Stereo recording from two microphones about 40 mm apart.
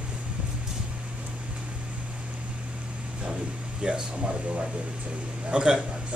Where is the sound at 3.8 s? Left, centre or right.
Right.